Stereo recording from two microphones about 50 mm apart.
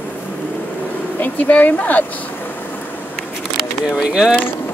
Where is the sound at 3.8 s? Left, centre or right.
Centre.